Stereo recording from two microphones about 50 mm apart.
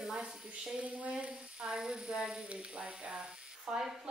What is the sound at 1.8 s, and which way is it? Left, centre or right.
Speech, centre.